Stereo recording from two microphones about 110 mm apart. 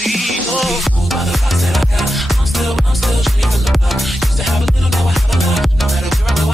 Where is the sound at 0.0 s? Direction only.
Centre (ahead or behind).